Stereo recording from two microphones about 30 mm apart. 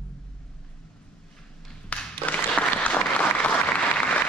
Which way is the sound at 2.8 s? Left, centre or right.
Left.